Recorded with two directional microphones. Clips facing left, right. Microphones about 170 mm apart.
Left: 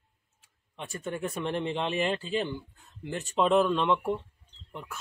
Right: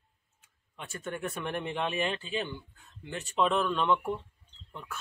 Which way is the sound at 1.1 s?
25° left (ahead or behind).